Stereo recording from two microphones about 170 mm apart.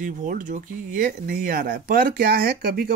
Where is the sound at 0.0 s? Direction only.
50° right (ahead or behind).